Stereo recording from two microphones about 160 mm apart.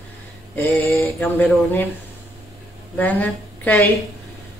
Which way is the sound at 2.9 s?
10° left (ahead or behind).